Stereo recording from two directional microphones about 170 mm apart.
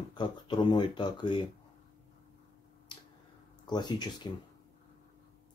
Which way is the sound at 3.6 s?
25° left (ahead or behind).